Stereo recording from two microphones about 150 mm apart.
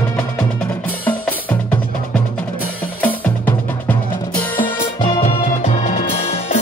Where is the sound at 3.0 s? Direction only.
10° left (ahead or behind).